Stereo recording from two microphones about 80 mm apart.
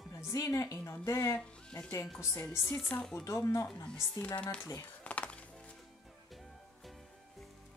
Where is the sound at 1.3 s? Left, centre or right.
Centre.